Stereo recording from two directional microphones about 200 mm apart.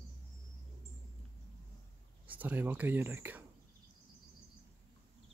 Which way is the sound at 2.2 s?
10° right (ahead or behind).